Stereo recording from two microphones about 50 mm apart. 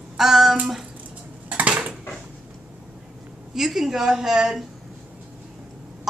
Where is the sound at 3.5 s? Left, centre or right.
Centre.